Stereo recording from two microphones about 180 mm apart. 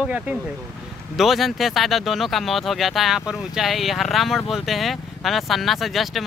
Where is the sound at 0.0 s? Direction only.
5° right (ahead or behind).